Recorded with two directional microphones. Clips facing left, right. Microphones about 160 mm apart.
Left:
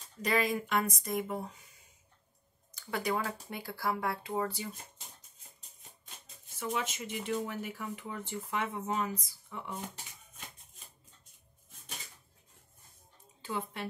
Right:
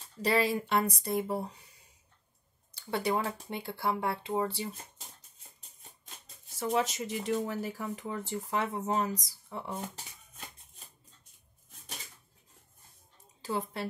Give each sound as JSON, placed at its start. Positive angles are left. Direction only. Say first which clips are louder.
{"t": 0.2, "sound": "speech", "louder": "right 3 dB", "side_deg": -30}
{"t": 2.7, "sound": "speech", "louder": "right 3 dB", "side_deg": -30}
{"t": 6.2, "sound": "speech", "louder": "right 4 dB", "side_deg": -35}
{"t": 13.4, "sound": "speech", "louder": "right 3 dB", "side_deg": -35}